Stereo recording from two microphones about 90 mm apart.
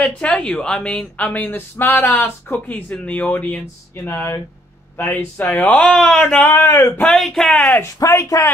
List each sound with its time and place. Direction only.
0.0 s speech: 10° left (ahead or behind)
3.9 s speech: 25° left (ahead or behind)
5.9 s speech: 5° left (ahead or behind); by 6.9 s 30° left (ahead or behind)
7.1 s speech: 5° left (ahead or behind)
7.4 s speech: 15° left (ahead or behind)
8.0 s speech: 35° left (ahead or behind)